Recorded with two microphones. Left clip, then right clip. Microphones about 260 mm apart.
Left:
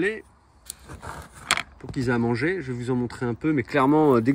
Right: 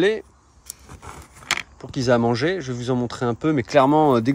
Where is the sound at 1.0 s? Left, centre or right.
Centre.